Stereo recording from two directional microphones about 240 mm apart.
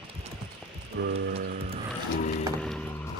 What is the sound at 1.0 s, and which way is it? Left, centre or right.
Music, right.